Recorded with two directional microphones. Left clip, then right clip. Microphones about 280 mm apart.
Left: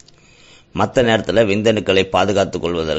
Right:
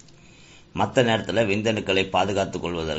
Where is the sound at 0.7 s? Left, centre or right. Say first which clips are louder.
Left 6 dB; left.